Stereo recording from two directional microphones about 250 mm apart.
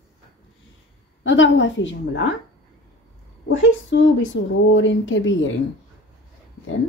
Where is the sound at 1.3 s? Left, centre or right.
Left.